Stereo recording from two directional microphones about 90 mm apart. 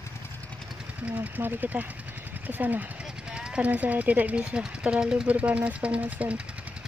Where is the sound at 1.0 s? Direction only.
20° right (ahead or behind).